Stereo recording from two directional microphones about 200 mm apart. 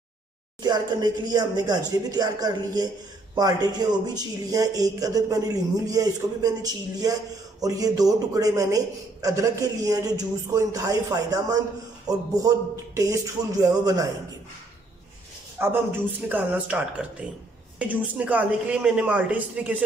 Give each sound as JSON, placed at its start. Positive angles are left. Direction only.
{"t": 0.6, "sound": "a man's voice", "side_deg": -20}
{"t": 15.6, "sound": "a man's voice", "side_deg": -10}